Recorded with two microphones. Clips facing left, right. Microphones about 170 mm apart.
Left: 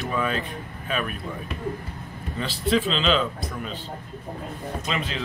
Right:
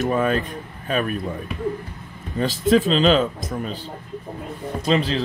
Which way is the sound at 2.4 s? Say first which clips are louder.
Right 6 dB; 45° right (ahead or behind).